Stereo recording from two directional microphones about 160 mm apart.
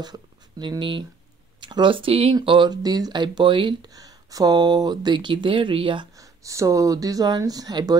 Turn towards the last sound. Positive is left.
turn(degrees=-25)  # may be behind; listen again after turning